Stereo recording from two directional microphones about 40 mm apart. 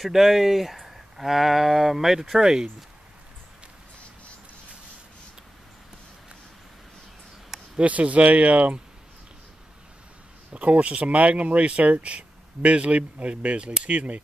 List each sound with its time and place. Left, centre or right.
0.0 s speech: centre
7.8 s speech: right
10.5 s speech: right